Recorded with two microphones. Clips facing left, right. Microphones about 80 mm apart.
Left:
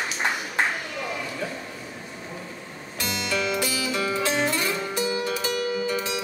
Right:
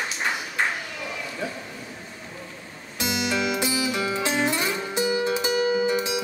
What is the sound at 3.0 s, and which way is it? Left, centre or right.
Music, centre.